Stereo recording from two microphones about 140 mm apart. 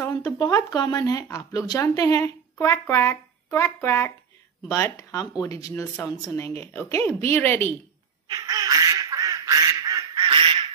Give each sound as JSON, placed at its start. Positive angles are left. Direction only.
{"t": 0.1, "sound": "speech", "side_deg": 30}
{"t": 8.3, "sound": "quack", "side_deg": -25}
{"t": 10.2, "sound": "quack", "side_deg": -40}